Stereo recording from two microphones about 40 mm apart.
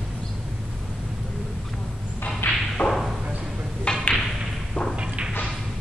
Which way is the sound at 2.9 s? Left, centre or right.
Centre.